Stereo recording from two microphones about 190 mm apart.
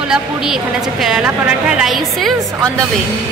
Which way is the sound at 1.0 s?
5° right (ahead or behind).